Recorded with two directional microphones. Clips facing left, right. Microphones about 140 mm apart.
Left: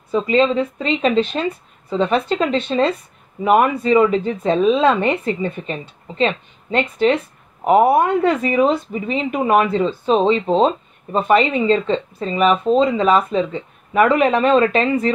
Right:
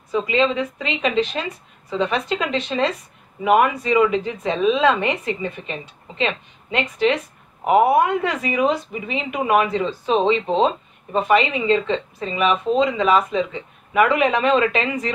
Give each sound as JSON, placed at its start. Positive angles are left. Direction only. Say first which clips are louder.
{"t": 0.1, "sound": "speech", "louder": "left 4 dB", "side_deg": 35}